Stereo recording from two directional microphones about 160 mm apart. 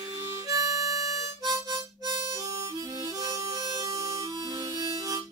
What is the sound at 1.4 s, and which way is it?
Harmonica, 25° right (ahead or behind).